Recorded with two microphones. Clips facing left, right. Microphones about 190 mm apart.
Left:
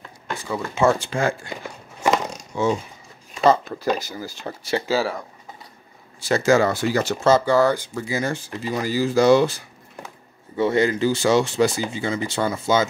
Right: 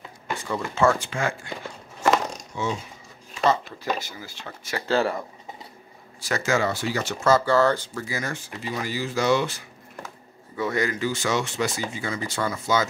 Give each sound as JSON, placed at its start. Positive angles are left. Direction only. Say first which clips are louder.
{"t": 0.9, "sound": "speech", "louder": "left 5 dB", "side_deg": 35}
{"t": 2.0, "sound": "a sound", "louder": "left 1 dB", "side_deg": 0}
{"t": 2.5, "sound": "speech", "louder": "left 9 dB", "side_deg": 45}
{"t": 4.8, "sound": "speech", "louder": "right 2 dB", "side_deg": 5}
{"t": 6.2, "sound": "speech", "louder": "left 6 dB", "side_deg": 35}
{"t": 7.2, "sound": "speech", "louder": "left 2 dB", "side_deg": 20}
{"t": 8.2, "sound": "speech", "louder": "left 6 dB", "side_deg": 30}